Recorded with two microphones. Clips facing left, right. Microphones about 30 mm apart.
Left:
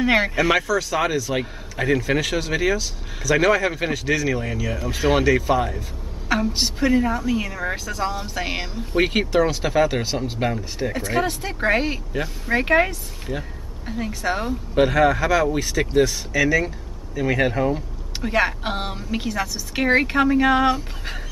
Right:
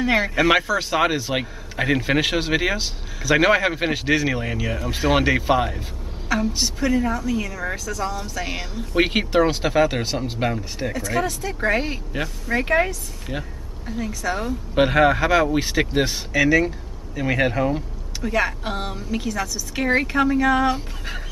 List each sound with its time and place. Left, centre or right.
0.0 s speech: centre
0.4 s speech: centre
6.5 s a woman's voice: centre
8.9 s speech: centre
9.7 s speech: centre
10.9 s speech: centre
11.6 s a woman's voice: centre
14.8 s speech: centre
15.6 s speech: right
16.3 s speech: centre
18.2 s speech: left